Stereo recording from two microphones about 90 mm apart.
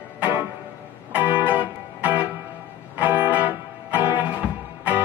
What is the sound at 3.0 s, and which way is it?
Music, 20° right (ahead or behind).